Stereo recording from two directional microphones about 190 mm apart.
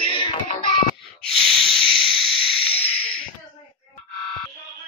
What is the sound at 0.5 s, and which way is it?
Music, 45° left (ahead or behind).